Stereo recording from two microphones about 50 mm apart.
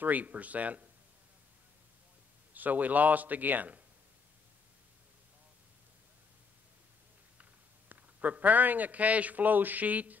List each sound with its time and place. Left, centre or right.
0.0 s a man's voice: right
2.5 s a man's voice: right
7.9 s a man's voice: right